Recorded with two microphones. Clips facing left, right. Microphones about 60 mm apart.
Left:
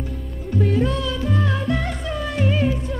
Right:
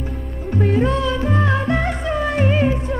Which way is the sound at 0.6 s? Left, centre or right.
Right.